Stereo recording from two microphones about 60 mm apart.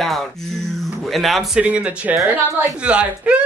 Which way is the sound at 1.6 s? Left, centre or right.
Right.